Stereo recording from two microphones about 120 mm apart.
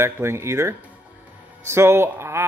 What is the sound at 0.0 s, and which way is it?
Speech, 20° right (ahead or behind).